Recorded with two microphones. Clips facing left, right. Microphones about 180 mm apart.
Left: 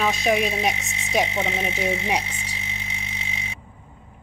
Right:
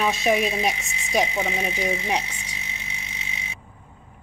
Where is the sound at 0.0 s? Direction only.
Centre (ahead or behind).